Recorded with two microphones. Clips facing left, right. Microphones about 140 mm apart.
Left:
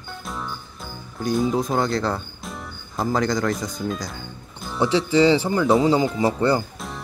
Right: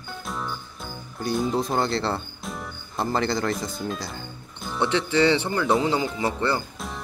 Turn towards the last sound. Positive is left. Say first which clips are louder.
# left 1 dB
turn(degrees=0)  # may be behind; listen again after turning